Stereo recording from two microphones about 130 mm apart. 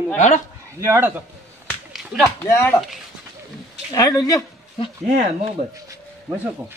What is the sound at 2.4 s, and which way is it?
Speech, 20° left (ahead or behind).